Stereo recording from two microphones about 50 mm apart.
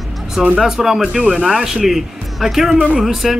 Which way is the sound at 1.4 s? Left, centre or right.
Centre.